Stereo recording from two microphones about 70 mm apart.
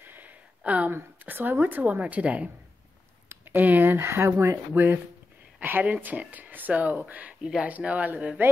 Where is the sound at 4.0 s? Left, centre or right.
Right.